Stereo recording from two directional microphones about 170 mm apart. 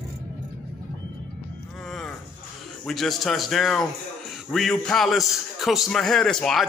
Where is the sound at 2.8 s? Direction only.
Centre (ahead or behind).